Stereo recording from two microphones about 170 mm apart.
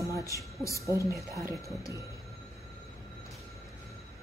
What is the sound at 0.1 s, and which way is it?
Speech, 20° left (ahead or behind).